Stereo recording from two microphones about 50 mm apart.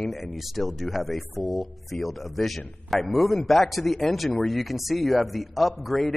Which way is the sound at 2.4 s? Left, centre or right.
Centre.